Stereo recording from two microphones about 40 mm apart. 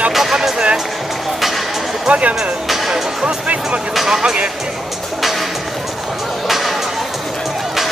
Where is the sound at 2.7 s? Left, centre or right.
Centre.